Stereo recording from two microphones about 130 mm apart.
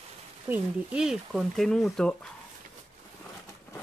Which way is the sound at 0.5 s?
5° right (ahead or behind).